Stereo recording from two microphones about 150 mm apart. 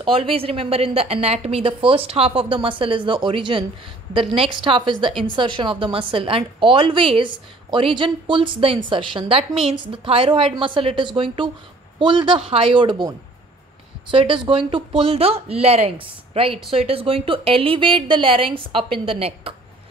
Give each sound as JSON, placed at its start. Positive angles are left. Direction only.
{"t": 0.0, "sound": "a woman's voice", "side_deg": -35}
{"t": 14.1, "sound": "a woman's voice", "side_deg": -35}